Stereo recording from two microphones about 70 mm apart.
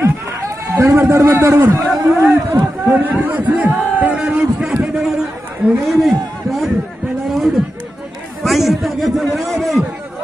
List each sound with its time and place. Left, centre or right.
0.7 s a man's voice: right; by 9.8 s centre